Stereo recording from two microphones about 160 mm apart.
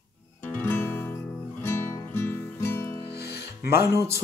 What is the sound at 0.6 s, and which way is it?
Music, 15° left (ahead or behind).